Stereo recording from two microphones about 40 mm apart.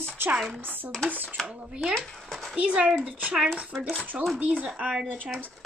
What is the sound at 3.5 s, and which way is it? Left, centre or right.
Speech, right.